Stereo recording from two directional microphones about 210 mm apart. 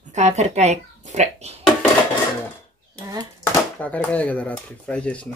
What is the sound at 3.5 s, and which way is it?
Speech, 10° left (ahead or behind).